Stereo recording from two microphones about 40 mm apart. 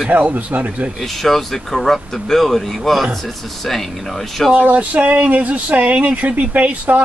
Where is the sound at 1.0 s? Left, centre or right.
Centre.